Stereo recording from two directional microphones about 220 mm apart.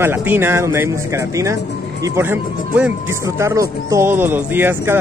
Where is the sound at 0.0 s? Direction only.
10° right (ahead or behind).